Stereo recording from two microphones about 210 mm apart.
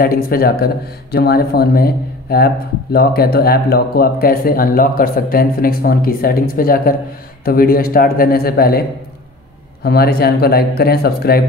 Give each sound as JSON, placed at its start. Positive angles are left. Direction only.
{"t": 0.0, "sound": "a man's voice", "side_deg": 45}
{"t": 9.8, "sound": "a man's voice", "side_deg": 50}